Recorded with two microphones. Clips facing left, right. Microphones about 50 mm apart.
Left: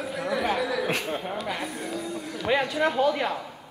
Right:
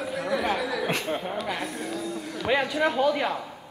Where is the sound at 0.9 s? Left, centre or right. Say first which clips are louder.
Even; centre.